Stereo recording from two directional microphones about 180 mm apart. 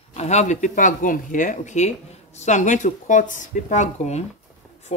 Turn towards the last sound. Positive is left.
turn(degrees=40)  # may be behind; listen again after turning